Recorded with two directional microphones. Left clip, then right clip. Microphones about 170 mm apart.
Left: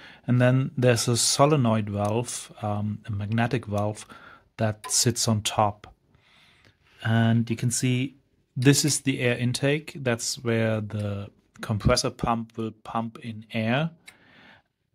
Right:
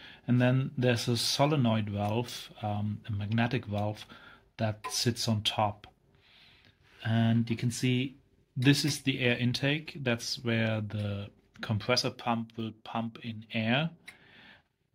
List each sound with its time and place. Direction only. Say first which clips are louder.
0.0 s speech: left 6 dB; 50° left (ahead or behind)
7.0 s speech: left 6 dB; 50° left (ahead or behind)
14.3 s tick-tock: left 2 dB; 45° left (ahead or behind)